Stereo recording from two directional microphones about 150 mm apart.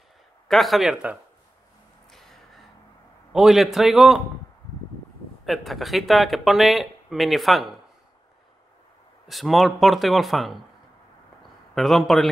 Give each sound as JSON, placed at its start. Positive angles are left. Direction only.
{"t": 0.5, "sound": "speech", "side_deg": 0}
{"t": 2.0, "sound": "a sound", "side_deg": 0}
{"t": 3.3, "sound": "speech", "side_deg": 0}
{"t": 5.4, "sound": "speech", "side_deg": 0}
{"t": 9.3, "sound": "speech", "side_deg": 0}
{"t": 11.7, "sound": "speech", "side_deg": 0}